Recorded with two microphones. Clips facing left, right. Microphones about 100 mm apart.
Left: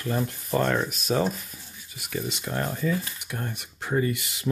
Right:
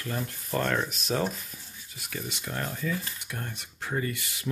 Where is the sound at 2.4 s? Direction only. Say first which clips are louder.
Left 4 dB; 35° left (ahead or behind).